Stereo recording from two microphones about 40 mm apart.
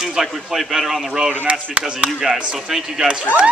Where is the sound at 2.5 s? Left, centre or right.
Centre.